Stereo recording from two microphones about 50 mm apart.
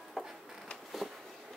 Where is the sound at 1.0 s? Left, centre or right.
Centre.